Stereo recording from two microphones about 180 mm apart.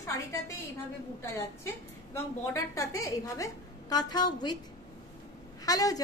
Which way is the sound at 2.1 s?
15° left (ahead or behind).